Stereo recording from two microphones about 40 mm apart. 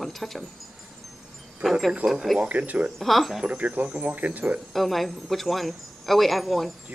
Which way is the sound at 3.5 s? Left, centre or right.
Right.